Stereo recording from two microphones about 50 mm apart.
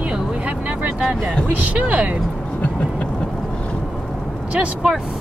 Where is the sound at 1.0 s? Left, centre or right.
Centre.